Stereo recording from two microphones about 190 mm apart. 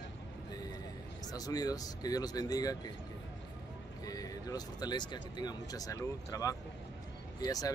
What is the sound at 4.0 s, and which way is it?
Speech, 20° left (ahead or behind).